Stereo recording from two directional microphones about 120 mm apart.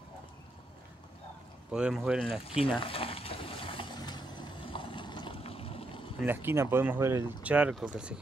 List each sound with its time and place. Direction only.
1.7 s speech: 5° right (ahead or behind)
2.8 s a sound: 50° left (ahead or behind)
5.4 s boat: 55° left (ahead or behind)
6.2 s speech: 15° right (ahead or behind)
7.4 s speech: 10° right (ahead or behind)